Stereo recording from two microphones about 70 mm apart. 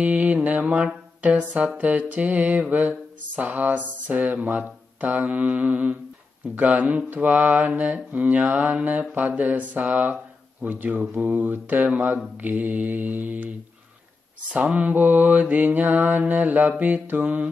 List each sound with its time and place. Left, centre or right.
0.0 s mantra: centre
14.5 s mantra: centre